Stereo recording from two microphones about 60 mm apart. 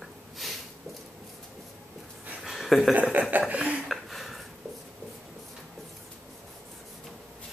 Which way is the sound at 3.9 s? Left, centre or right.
Centre.